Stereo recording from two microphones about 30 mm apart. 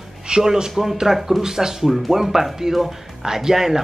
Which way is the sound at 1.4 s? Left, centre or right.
Centre.